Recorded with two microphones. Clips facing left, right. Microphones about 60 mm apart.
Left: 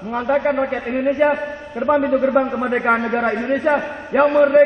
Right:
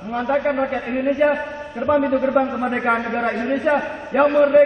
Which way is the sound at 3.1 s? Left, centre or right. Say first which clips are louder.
Left 2 dB; left.